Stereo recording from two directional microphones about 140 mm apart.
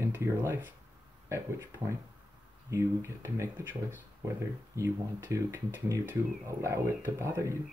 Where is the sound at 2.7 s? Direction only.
20° right (ahead or behind).